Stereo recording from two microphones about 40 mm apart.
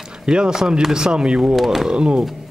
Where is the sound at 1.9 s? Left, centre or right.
Centre.